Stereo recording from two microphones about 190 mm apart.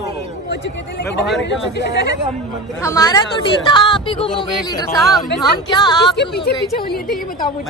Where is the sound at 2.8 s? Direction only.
15° left (ahead or behind).